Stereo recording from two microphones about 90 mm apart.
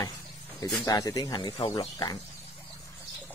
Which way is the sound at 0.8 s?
40° left (ahead or behind).